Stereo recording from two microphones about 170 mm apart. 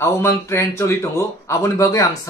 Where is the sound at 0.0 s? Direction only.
15° left (ahead or behind).